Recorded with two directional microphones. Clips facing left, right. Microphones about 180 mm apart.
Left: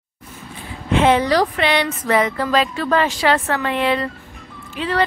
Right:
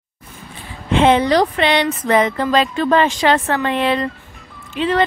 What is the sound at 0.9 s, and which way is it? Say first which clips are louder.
A woman's voice: right 2 dB; 25° right (ahead or behind).